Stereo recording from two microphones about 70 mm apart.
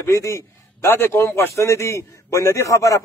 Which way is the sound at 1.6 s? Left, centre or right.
Left.